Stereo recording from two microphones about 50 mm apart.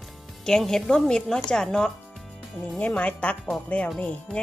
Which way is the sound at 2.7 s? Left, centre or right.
Left.